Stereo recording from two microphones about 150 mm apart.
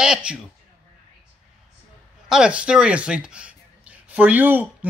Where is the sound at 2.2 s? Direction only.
5° right (ahead or behind).